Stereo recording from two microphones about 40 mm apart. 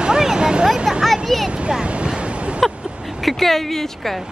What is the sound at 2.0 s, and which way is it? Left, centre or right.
Waves, right.